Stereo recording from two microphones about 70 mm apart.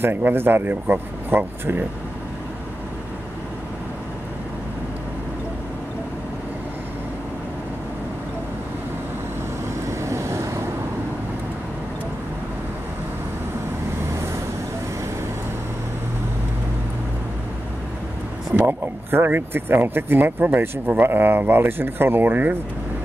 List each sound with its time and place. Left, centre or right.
0.0 s speech: right
9.8 s vehicle: right
18.5 s speech: right